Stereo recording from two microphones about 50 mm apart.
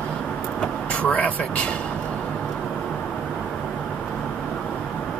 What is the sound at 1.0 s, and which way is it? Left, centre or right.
Speech, left.